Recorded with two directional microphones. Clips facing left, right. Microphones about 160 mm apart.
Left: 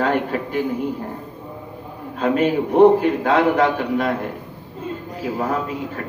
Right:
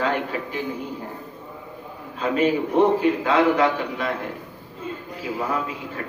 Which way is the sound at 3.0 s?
50° left (ahead or behind).